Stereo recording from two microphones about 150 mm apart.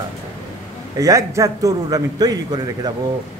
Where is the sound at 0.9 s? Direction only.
20° right (ahead or behind).